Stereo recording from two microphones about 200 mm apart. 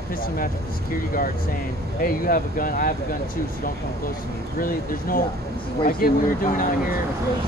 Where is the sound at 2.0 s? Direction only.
45° left (ahead or behind).